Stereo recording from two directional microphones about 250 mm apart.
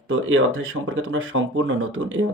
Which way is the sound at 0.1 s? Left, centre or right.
Right.